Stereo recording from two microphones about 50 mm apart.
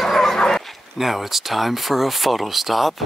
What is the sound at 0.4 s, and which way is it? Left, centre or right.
Bow-wow, centre.